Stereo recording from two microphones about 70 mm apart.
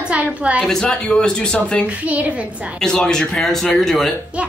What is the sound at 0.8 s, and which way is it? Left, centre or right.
A man's voice, centre.